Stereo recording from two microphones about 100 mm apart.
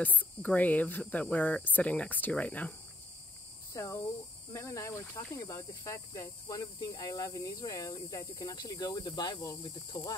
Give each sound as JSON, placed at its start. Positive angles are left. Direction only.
{"t": 0.0, "sound": "speech", "side_deg": 15}
{"t": 3.7, "sound": "insect", "side_deg": 30}